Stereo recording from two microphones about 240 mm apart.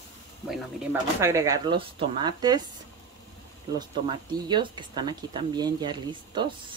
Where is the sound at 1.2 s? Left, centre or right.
Centre.